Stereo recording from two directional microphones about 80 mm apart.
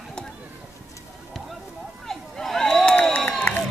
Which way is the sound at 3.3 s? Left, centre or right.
Centre.